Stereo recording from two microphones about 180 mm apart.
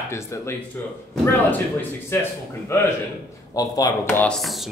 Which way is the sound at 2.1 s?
10° left (ahead or behind).